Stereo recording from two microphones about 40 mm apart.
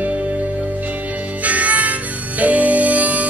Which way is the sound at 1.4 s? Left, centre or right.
Right.